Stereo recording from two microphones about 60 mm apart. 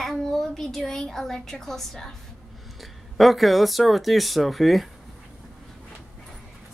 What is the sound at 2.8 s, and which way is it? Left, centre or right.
Speech, centre.